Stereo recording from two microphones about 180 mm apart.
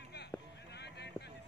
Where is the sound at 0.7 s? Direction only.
70° left (ahead or behind).